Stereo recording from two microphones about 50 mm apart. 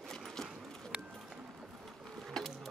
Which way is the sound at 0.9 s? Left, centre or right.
Centre.